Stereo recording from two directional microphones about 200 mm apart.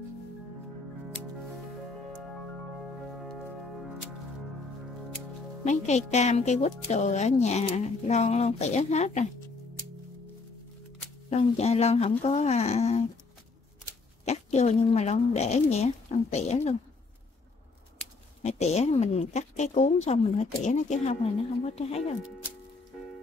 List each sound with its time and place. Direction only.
3.1 s music: centre (ahead or behind)
5.7 s speech: 35° left (ahead or behind)
11.2 s speech: 35° left (ahead or behind)
14.2 s speech: 35° left (ahead or behind)
18.4 s speech: 35° left (ahead or behind)